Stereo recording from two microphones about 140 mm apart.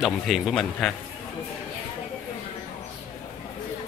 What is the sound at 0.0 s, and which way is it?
Speech, centre (ahead or behind).